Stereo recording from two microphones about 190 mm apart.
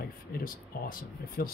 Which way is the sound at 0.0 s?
50° left (ahead or behind).